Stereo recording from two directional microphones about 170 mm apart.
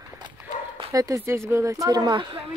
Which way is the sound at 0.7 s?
20° right (ahead or behind).